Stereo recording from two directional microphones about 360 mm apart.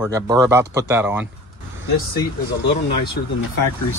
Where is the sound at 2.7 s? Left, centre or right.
Left.